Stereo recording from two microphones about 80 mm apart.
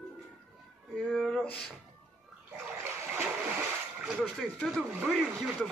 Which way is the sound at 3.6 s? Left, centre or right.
Centre.